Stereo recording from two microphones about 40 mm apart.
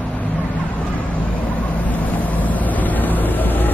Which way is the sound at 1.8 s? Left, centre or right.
Left.